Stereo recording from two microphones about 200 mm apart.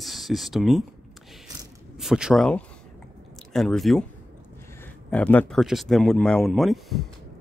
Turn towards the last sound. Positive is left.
turn(degrees=0)  # may be behind; listen again after turning